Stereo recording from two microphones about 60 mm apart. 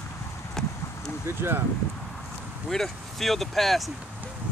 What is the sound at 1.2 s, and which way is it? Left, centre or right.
Speech, right.